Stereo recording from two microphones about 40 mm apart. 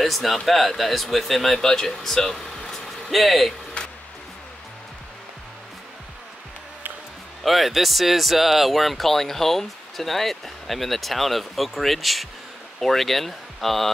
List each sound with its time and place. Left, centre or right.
0.0 s speech: centre
3.8 s music: left
7.4 s speech: centre